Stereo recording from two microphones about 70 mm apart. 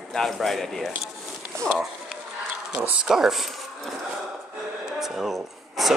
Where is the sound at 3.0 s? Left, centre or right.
Centre.